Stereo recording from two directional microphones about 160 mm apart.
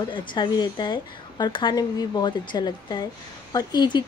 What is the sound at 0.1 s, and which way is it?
A woman's voice, 30° left (ahead or behind).